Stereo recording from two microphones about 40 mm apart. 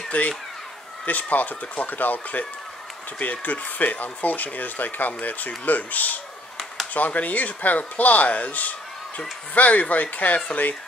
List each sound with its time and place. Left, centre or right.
0.1 s speech: left